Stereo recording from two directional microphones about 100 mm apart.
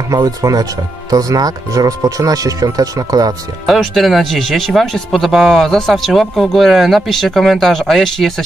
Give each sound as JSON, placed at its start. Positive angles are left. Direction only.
{"t": 0.1, "sound": "speech", "side_deg": -35}
{"t": 3.6, "sound": "speech", "side_deg": 0}